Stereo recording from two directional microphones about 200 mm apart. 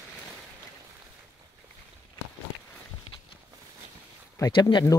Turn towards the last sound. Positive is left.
turn(degrees=20)  # may be behind; listen again after turning